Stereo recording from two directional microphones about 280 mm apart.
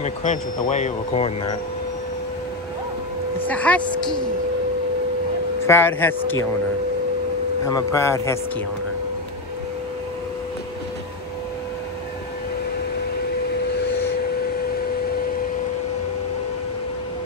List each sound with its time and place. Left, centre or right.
0.0 s speech: left
3.4 s speech: centre
5.7 s speech: centre
7.6 s speech: centre